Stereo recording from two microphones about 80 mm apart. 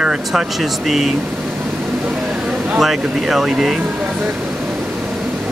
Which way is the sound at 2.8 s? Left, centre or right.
Centre.